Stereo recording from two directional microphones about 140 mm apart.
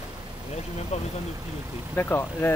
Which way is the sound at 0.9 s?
50° left (ahead or behind).